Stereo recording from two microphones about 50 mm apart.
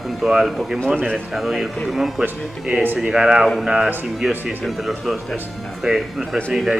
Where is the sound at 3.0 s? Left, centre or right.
Centre.